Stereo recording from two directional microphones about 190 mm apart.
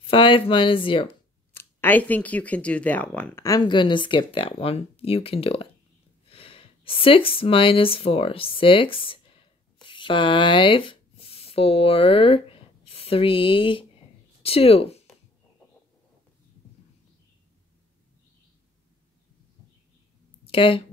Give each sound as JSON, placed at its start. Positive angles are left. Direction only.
{"t": 0.0, "sound": "speech", "side_deg": 30}
{"t": 1.0, "sound": "speech", "side_deg": 15}
{"t": 20.4, "sound": "speech", "side_deg": 30}